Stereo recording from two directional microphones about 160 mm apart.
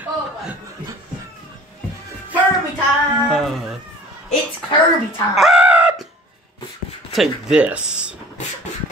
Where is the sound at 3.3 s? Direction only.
Centre (ahead or behind).